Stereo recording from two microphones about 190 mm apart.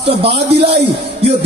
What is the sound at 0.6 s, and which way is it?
Speech, 30° right (ahead or behind).